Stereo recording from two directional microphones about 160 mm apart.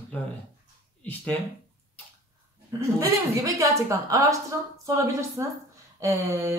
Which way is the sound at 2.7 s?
20° right (ahead or behind).